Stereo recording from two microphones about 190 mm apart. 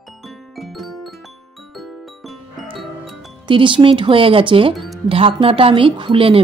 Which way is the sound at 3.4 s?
25° right (ahead or behind).